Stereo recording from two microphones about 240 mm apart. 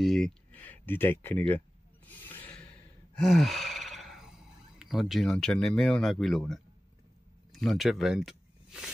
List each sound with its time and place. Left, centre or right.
0.0 s speech: centre
2.0 s a sound: centre
3.2 s speech: centre